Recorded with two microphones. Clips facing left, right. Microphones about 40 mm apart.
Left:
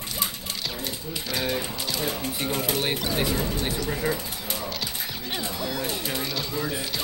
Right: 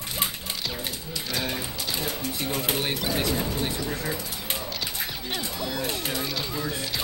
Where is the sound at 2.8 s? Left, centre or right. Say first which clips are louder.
Left 1 dB; centre.